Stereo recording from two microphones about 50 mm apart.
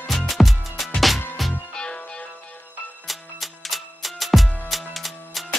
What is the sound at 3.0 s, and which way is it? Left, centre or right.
Music, centre.